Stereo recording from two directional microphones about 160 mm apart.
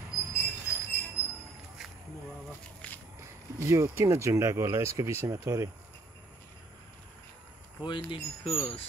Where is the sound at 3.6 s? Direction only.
15° right (ahead or behind).